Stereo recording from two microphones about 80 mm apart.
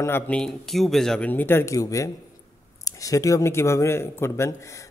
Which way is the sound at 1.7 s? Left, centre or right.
Left.